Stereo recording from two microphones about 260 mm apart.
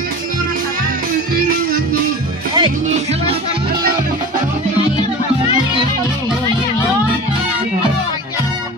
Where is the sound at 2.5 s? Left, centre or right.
Right.